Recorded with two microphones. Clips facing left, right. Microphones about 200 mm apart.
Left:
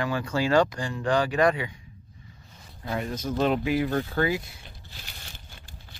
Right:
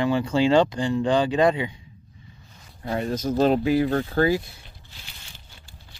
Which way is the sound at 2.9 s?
30° right (ahead or behind).